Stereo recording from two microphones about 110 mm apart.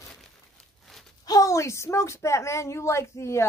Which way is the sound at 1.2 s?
35° left (ahead or behind).